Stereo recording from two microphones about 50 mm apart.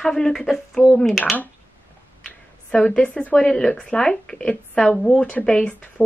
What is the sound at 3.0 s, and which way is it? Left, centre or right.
Speech, left.